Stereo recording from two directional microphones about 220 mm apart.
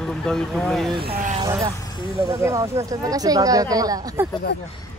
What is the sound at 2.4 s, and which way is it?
Speech, 15° right (ahead or behind).